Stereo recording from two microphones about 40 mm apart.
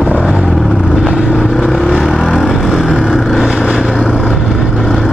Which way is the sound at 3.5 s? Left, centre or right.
Right.